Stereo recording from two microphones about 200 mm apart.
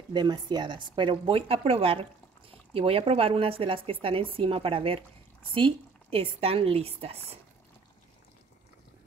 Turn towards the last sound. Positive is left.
turn(degrees=-30)  # may be behind; listen again after turning